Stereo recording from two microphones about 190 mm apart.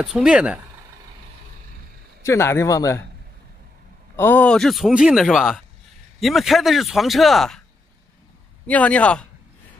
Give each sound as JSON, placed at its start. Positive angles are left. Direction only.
{"t": 0.0, "sound": "speech", "side_deg": -5}
{"t": 2.2, "sound": "speech", "side_deg": 15}
{"t": 4.2, "sound": "speech", "side_deg": 10}
{"t": 8.6, "sound": "speech", "side_deg": 5}